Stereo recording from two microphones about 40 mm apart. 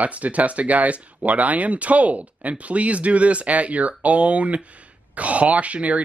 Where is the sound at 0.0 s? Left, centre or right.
Right.